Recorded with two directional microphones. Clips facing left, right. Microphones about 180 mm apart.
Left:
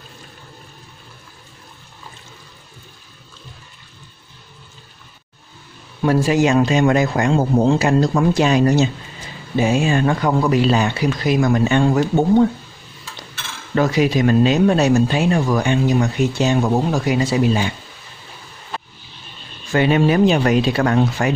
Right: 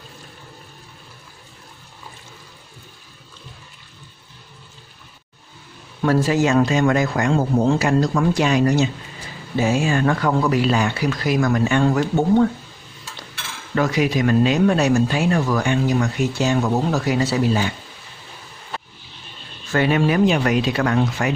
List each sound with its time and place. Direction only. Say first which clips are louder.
6.0 s speech: left 2 dB; 15° left (ahead or behind)
9.6 s speech: left 2 dB; 20° left (ahead or behind)
13.7 s speech: left 3 dB; 30° left (ahead or behind)
19.7 s speech: left 3 dB; 20° left (ahead or behind)